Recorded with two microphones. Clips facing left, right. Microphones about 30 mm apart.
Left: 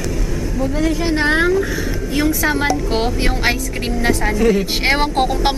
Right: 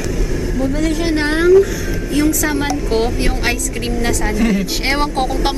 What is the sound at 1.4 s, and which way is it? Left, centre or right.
Speech, centre.